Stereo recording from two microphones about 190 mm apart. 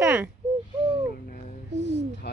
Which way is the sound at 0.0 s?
10° right (ahead or behind).